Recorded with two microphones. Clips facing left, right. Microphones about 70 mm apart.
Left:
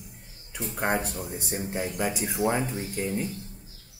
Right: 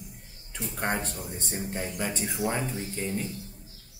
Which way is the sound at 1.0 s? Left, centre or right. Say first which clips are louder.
Left 3 dB; centre.